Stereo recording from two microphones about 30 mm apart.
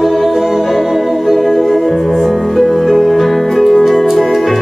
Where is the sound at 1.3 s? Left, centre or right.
Centre.